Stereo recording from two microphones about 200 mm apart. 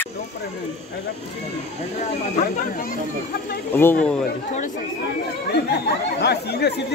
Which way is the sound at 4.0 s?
5° left (ahead or behind).